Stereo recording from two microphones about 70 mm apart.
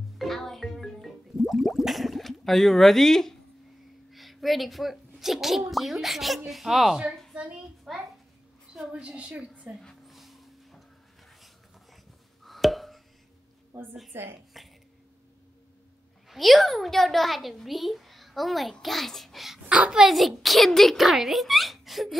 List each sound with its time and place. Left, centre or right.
0.2 s music: centre
1.5 s a sound: centre
4.1 s a child's voice: centre
7.1 s a sound: centre
7.3 s a woman's voice: centre
7.9 s a child's voice: centre
9.0 s a woman's voice: centre
9.8 s a sound: centre
12.4 s music: centre
13.7 s a woman's voice: right
14.5 s burping: centre
16.3 s a child's voice: centre
19.7 s a child's voice: centre